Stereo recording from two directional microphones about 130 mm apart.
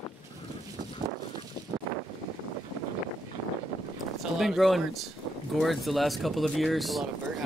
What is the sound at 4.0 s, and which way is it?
Speech, centre (ahead or behind).